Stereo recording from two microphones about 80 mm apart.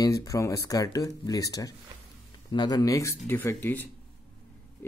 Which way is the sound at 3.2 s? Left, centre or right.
Left.